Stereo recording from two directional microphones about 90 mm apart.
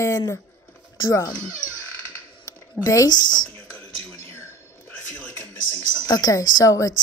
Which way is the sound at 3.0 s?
50° left (ahead or behind).